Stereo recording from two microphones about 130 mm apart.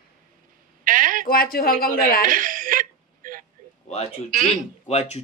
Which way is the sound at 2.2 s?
90° right.